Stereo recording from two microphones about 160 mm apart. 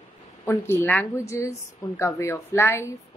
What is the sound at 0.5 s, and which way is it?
A woman's voice, 15° left (ahead or behind).